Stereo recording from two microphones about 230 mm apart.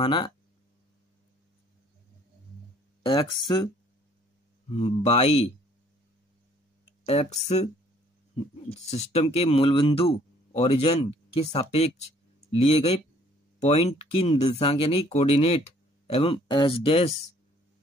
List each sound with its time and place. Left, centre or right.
0.0 s speech: left
3.0 s speech: left
4.7 s speech: left
7.1 s speech: left
8.9 s speech: left